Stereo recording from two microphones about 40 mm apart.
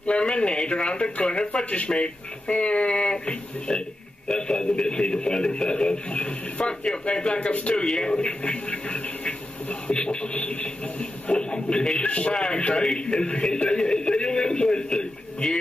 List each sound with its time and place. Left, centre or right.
0.0 s speech: left